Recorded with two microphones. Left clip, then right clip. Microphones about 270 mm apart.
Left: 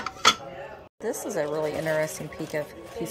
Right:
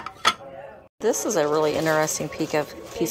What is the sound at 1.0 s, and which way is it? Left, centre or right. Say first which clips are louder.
Speech: right 7 dB; centre.